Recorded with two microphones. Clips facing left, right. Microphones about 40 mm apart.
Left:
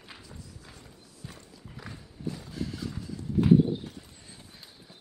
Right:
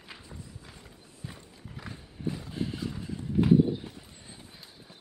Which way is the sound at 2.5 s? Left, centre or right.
Right.